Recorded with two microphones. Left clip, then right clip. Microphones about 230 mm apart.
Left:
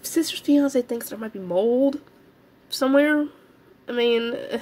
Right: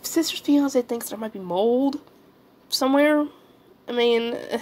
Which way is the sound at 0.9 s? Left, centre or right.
Left.